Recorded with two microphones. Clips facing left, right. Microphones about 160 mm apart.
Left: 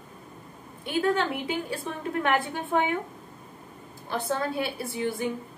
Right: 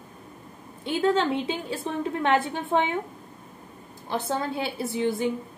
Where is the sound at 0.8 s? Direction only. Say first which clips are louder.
Right 2 dB; 20° right (ahead or behind).